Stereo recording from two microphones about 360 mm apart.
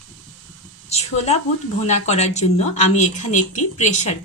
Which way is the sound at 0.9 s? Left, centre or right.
Centre.